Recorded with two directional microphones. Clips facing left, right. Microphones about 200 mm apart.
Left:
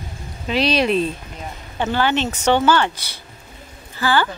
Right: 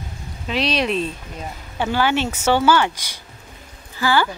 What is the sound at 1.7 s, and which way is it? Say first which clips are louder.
A woman's voice: even; 10° right (ahead or behind).